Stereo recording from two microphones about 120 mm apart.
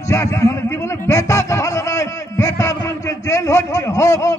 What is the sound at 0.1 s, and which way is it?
Music, 25° left (ahead or behind).